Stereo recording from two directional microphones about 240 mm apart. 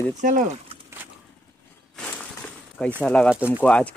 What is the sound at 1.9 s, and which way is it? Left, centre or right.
Walk, centre.